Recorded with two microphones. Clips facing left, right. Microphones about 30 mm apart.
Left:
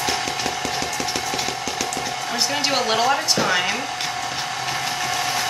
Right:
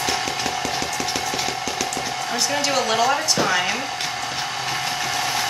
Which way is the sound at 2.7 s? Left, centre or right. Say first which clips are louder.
Even; centre.